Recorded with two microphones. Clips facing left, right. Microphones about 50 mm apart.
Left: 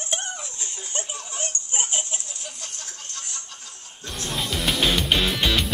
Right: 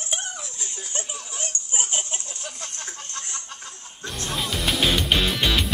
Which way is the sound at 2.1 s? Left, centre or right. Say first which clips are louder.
Right 1 dB; right.